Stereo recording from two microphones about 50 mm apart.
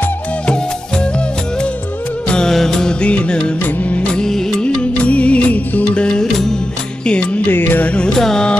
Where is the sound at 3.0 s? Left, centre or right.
Left.